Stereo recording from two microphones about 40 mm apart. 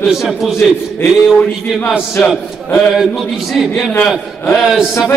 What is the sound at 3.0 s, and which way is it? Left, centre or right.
Speech, centre.